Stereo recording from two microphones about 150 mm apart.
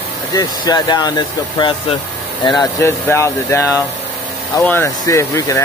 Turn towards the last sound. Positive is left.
turn(degrees=20)  # may be behind; listen again after turning